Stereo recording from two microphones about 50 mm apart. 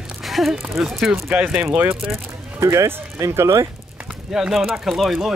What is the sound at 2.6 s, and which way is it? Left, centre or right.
Speech, right.